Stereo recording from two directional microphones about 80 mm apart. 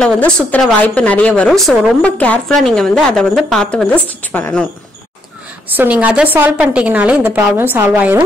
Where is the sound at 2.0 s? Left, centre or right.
Centre.